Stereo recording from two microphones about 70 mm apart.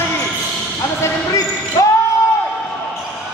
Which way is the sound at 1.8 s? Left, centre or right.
Left.